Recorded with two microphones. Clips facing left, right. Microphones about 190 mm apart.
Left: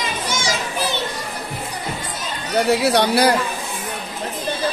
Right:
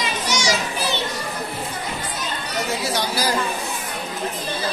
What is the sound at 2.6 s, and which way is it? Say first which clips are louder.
Speech: left 9 dB; 65° left (ahead or behind).